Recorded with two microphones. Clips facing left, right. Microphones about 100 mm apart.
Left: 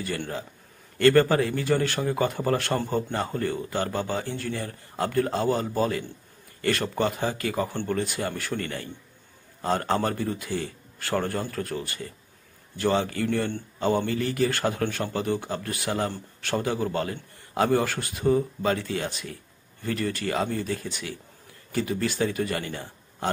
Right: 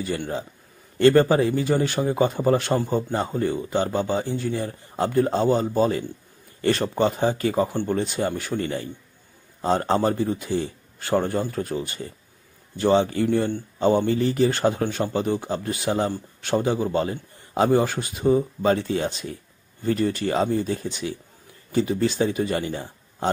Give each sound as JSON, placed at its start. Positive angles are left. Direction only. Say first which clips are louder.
{"t": 0.9, "sound": "speech", "louder": "right 3 dB", "side_deg": -20}